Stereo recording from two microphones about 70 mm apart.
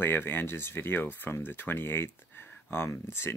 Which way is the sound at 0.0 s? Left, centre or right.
Left.